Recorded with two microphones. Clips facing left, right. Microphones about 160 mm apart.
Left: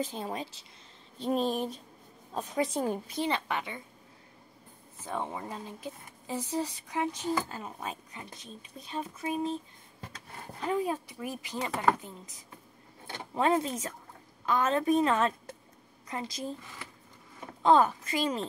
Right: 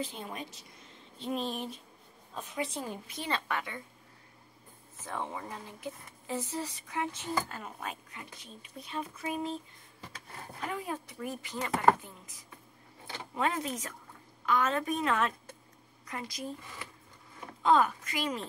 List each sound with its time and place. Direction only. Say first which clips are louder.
0.0 s a woman's voice: left 4 dB; 35° left (ahead or behind)
1.2 s a woman's voice: left 6 dB; 40° left (ahead or behind)
3.3 s speech: even; 20° left (ahead or behind)
5.0 s speech: left 2 dB; 15° left (ahead or behind)
10.7 s speech: left 9 dB; 15° left (ahead or behind)
13.3 s speech: left 5 dB; 30° left (ahead or behind)
17.6 s speech: left 3 dB; 30° left (ahead or behind)